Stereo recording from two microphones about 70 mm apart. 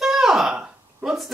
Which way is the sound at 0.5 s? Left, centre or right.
Centre.